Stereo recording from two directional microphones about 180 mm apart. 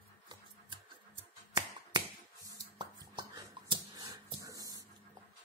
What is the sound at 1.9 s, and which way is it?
Finger snapping, 25° right (ahead or behind).